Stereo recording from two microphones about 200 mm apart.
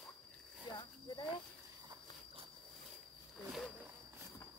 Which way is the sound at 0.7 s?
20° left (ahead or behind).